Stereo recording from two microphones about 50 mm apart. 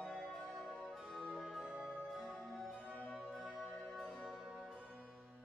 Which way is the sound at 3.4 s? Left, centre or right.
Centre.